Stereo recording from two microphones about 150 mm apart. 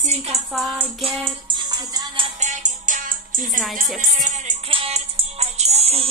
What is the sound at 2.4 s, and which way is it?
Music, 55° right (ahead or behind).